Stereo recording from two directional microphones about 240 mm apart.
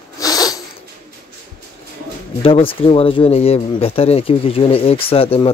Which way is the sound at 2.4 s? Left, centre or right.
Left.